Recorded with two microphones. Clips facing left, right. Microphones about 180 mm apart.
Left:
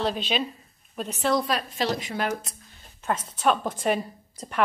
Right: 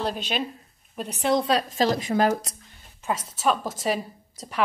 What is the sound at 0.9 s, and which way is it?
Speech, 15° right (ahead or behind).